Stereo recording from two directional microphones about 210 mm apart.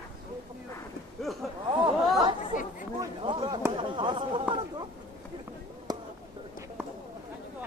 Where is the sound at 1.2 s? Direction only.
Centre (ahead or behind).